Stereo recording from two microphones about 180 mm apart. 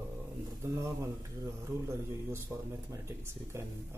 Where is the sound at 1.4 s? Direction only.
15° right (ahead or behind).